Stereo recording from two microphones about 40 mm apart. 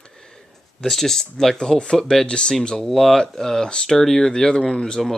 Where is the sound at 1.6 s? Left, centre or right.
Centre.